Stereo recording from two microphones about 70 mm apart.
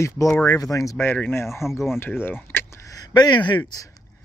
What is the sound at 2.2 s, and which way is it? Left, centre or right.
Vehicle, left.